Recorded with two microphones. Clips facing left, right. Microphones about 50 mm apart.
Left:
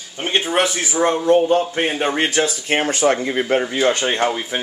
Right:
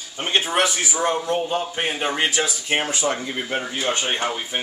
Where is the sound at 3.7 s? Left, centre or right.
Left.